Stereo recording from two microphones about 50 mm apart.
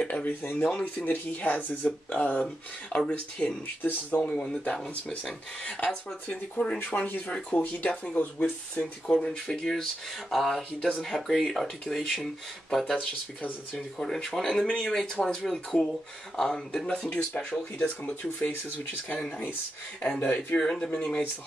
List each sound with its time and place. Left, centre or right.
0.0 s speech: left
3.8 s speech: left
4.2 s speech: centre
6.2 s speech: left
9.5 s speech: centre
12.9 s speech: left
13.7 s speech: centre
17.4 s speech: left
20.2 s speech: left
20.5 s speech: centre